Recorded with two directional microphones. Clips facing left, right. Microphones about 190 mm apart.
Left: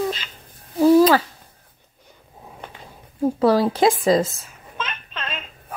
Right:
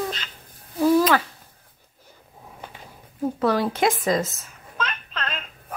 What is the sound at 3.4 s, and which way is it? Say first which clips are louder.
Speech: left 5 dB; 30° left (ahead or behind).